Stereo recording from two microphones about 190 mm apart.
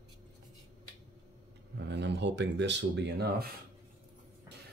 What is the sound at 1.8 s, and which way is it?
Speech, 65° right (ahead or behind).